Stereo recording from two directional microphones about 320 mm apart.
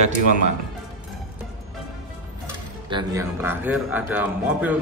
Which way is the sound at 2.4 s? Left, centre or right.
Centre.